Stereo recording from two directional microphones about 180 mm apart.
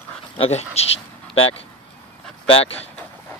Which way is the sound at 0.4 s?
35° left (ahead or behind).